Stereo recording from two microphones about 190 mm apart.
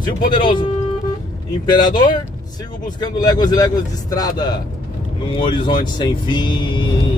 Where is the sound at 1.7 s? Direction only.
25° left (ahead or behind).